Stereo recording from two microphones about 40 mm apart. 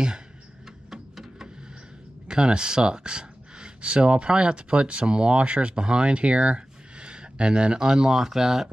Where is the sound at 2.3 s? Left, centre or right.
Right.